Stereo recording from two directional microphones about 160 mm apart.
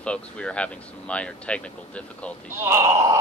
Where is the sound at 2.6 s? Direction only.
20° right (ahead or behind).